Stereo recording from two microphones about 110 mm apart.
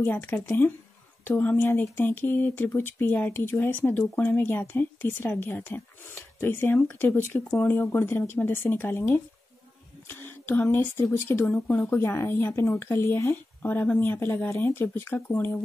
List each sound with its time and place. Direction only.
0.0 s speech: 20° left (ahead or behind)